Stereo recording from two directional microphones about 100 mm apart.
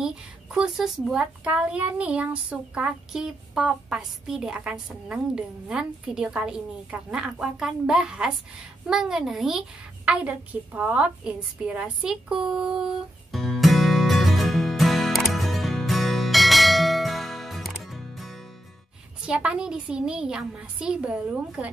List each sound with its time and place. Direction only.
0.0 s a woman's voice: 5° right (ahead or behind)
12.4 s music: 5° right (ahead or behind)
19.2 s a woman's voice: 10° right (ahead or behind)